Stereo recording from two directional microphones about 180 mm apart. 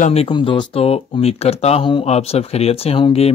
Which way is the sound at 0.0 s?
35° left (ahead or behind).